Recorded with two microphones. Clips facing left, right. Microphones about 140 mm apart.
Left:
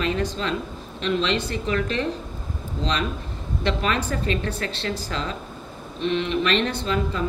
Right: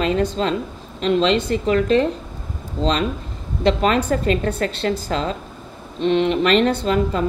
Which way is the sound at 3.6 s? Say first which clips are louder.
Right 7 dB; 35° right (ahead or behind).